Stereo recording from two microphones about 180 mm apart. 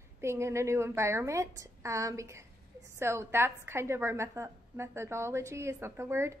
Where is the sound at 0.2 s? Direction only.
15° right (ahead or behind).